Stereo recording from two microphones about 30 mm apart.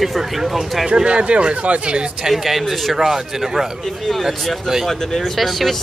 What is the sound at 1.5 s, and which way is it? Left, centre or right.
Speech, right.